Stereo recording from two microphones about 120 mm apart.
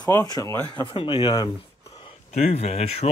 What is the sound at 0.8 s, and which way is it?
Speech, 45° left (ahead or behind).